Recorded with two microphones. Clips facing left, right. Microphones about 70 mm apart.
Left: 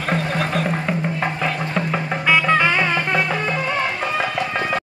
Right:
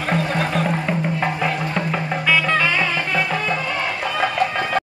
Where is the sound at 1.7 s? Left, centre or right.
Centre; by 3.2 s left.